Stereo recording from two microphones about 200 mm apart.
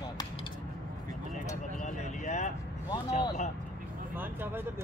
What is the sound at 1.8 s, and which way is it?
Vehicle, 35° left (ahead or behind).